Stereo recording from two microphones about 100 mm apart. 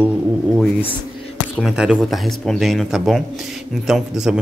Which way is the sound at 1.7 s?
10° right (ahead or behind).